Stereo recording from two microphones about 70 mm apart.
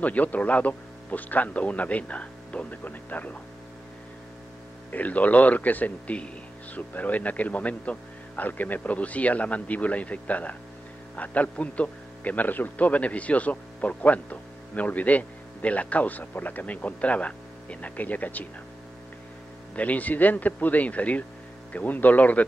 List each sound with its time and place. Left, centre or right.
0.0 s speech: left
4.9 s speech: left
19.7 s speech: left